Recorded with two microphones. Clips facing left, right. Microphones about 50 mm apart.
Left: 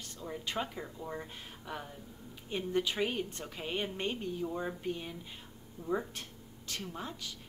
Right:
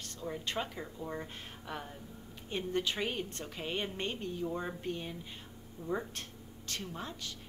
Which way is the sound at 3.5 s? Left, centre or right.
Centre.